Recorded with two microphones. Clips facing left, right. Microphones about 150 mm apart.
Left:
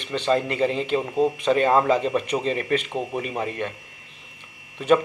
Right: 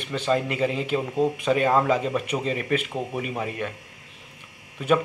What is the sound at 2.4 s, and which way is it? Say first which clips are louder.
Speech: left 2 dB; 5° right (ahead or behind).